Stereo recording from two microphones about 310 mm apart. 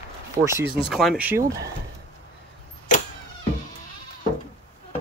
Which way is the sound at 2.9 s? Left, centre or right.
Left.